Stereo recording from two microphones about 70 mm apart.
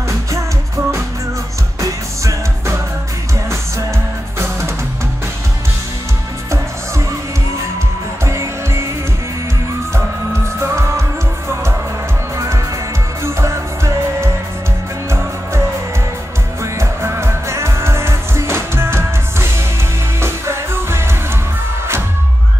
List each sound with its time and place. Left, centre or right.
1.8 s music: right
6.5 s music: right
8.3 s music: right
10.6 s music: right
16.7 s music: right